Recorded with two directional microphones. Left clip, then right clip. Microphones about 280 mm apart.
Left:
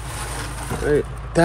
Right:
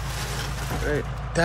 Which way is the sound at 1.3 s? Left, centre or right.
Centre.